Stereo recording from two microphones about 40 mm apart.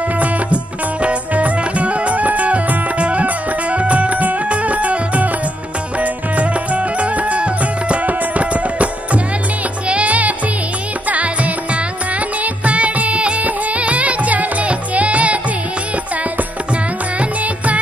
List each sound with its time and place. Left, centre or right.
1.0 s music: right
16.7 s music: right